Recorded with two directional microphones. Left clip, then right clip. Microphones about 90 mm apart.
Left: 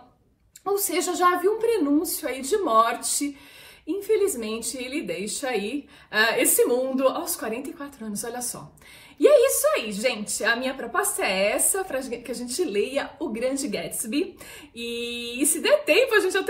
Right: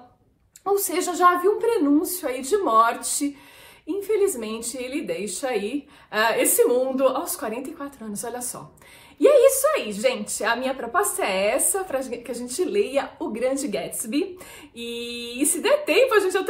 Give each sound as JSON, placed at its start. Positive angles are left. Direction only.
{"t": 0.7, "sound": "a woman's voice", "side_deg": -25}